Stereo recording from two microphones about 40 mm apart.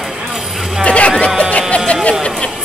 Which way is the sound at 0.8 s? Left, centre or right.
Left.